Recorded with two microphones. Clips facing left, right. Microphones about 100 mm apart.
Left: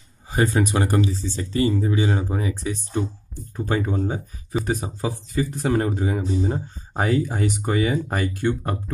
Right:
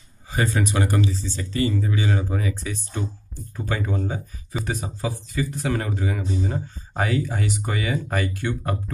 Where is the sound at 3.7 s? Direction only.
30° left (ahead or behind).